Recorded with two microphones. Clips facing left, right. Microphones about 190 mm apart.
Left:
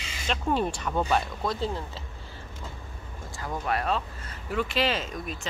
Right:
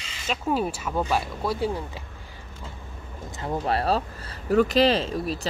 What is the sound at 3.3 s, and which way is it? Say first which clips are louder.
Speech: right 4 dB; 30° right (ahead or behind).